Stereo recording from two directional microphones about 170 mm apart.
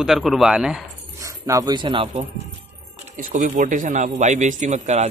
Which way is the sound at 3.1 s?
50° right (ahead or behind).